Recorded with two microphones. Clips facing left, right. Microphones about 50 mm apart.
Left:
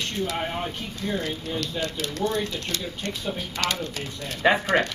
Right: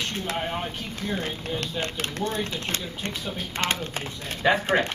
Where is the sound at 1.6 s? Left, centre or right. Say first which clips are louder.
Left 2 dB; right.